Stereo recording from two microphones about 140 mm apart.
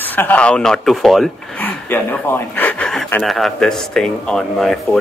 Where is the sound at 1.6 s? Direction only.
15° left (ahead or behind).